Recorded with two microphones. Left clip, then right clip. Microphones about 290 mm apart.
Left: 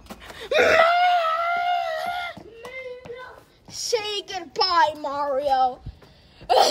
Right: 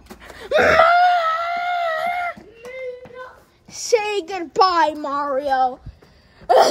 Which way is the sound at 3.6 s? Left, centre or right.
Centre.